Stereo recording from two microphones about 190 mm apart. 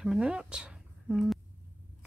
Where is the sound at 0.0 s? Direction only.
5° right (ahead or behind).